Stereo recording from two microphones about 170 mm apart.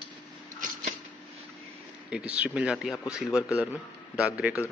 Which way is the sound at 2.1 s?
5° right (ahead or behind).